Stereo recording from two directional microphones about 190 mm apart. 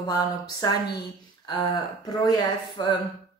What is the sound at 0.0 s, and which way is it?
A woman's voice, 20° left (ahead or behind).